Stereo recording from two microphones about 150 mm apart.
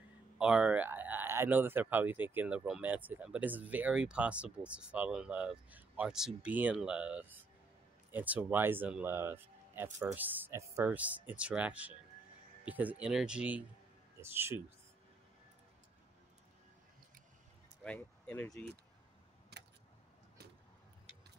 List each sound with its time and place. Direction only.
0.4 s speech: 5° right (ahead or behind)
17.8 s speech: 10° left (ahead or behind)